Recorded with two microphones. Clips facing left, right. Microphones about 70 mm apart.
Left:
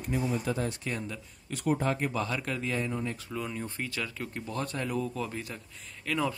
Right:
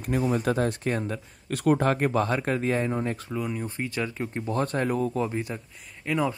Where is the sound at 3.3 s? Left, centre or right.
Centre.